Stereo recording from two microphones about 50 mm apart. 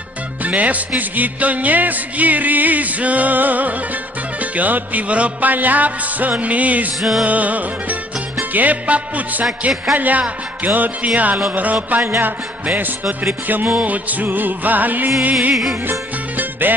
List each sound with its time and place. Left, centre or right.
0.4 s music: right
7.0 s music: centre
7.2 s music: right
15.5 s music: centre
15.9 s music: right